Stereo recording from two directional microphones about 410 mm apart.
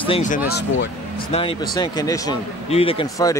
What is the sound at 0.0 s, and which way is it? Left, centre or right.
Speech, centre.